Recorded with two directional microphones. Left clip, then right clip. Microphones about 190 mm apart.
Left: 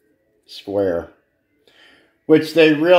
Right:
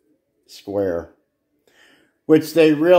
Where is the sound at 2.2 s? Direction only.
15° right (ahead or behind).